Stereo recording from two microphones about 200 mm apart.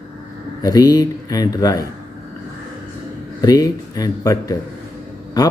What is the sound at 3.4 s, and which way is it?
Speech, 20° left (ahead or behind).